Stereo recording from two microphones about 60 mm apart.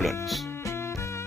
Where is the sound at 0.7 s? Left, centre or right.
Left.